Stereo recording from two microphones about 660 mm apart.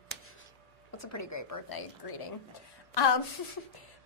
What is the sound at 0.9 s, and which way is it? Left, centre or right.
Speech, left.